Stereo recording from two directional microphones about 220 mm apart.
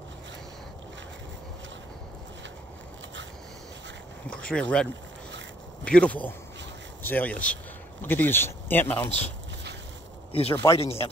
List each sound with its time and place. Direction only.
4.5 s speech: 5° left (ahead or behind)
5.9 s speech: 5° left (ahead or behind)
10.3 s speech: 25° left (ahead or behind)